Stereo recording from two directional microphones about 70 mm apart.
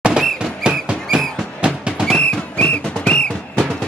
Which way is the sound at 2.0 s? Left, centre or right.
Centre.